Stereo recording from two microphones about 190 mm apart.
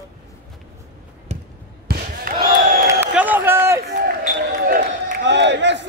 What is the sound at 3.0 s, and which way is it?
Run, 10° right (ahead or behind).